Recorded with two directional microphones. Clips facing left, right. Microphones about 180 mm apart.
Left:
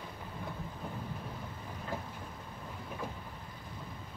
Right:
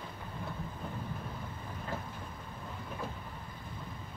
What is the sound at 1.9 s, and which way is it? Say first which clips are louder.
Vehicle: left 1 dB; 15° left (ahead or behind).